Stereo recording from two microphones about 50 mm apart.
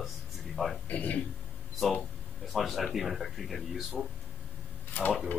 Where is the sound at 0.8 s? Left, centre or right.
Left.